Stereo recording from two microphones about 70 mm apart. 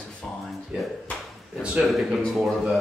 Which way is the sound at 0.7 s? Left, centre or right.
Centre.